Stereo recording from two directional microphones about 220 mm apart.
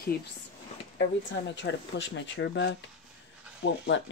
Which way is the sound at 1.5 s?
55° left (ahead or behind).